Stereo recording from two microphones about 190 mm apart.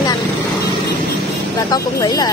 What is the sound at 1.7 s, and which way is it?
Speech, 20° left (ahead or behind).